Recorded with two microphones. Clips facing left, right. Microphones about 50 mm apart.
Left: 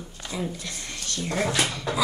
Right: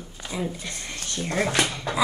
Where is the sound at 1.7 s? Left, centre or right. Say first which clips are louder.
Even; centre.